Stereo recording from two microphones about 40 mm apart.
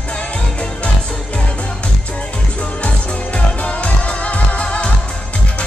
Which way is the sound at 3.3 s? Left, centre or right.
Left.